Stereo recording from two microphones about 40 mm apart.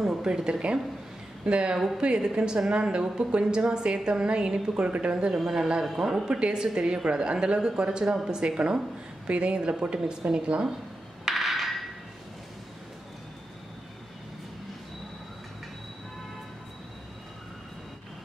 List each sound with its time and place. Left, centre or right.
0.1 s a woman's voice: centre
5.1 s a man's voice: centre
6.2 s a woman's voice: right
11.2 s a sound: centre